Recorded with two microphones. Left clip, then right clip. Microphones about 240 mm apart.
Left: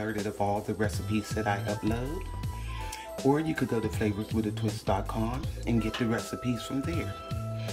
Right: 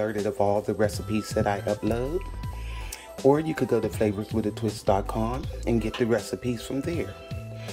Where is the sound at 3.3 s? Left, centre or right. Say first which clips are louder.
Right 6 dB; centre.